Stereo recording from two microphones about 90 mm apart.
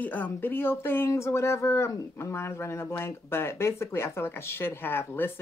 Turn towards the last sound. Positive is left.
turn(degrees=25)  # may be behind; listen again after turning